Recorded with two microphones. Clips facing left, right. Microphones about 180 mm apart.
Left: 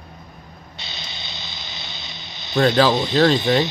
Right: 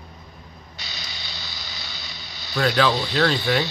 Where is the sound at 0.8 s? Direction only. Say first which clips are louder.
Left 2 dB; 25° left (ahead or behind).